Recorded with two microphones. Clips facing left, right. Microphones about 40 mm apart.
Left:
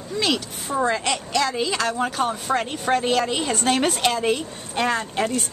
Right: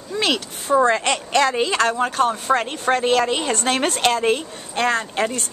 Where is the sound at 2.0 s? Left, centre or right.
Centre.